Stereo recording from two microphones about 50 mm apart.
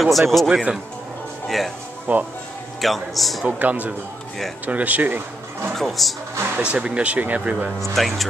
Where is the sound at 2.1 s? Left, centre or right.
Right.